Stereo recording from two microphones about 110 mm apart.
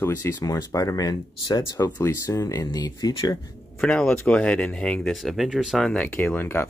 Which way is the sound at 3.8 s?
5° left (ahead or behind).